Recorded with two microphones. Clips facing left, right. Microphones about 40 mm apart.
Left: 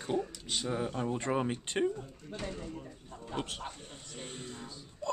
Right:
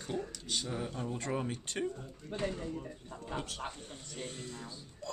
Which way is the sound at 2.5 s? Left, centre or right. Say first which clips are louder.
Right 2 dB; centre.